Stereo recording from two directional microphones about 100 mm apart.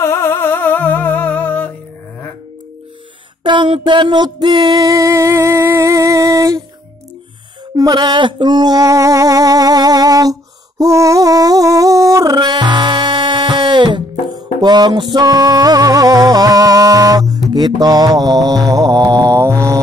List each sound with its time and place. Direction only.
0.0 s humming: 25° left (ahead or behind)
3.4 s a sound: 55° right (ahead or behind)
3.8 s music: 50° right (ahead or behind)
4.8 s music: 35° right (ahead or behind)
7.7 s a sound: 45° right (ahead or behind)
10.8 s humming: 30° right (ahead or behind); by 14.0 s 50° right (ahead or behind)
14.6 s music: 45° right (ahead or behind)